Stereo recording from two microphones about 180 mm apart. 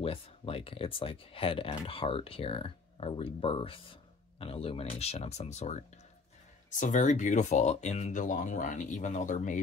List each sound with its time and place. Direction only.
0.0 s speech: 30° left (ahead or behind)